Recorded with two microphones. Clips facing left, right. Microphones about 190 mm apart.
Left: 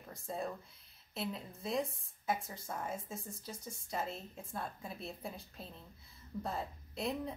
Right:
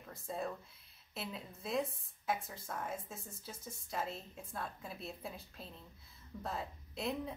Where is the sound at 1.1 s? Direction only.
Centre (ahead or behind).